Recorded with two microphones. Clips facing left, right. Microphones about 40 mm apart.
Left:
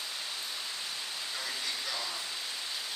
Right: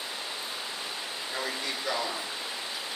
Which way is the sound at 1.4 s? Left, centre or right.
Right.